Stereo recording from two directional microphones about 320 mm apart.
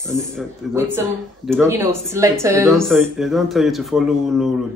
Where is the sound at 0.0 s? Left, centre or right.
Centre.